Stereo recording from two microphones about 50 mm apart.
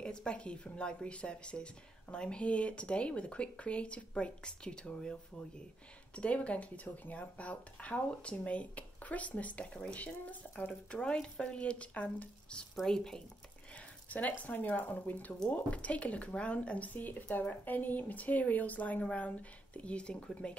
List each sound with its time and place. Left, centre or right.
0.0 s speech: centre
6.1 s speech: left
10.9 s speech: centre
12.8 s speech: centre
14.0 s speech: left